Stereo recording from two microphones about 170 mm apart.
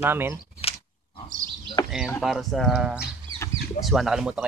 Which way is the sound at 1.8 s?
5° right (ahead or behind).